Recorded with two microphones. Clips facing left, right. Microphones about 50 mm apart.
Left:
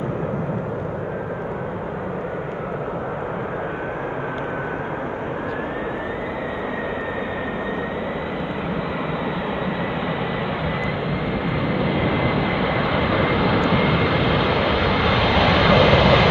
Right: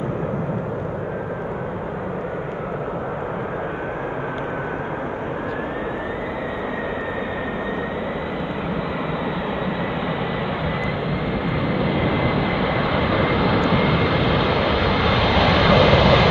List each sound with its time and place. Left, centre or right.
11.7 s vehicle: centre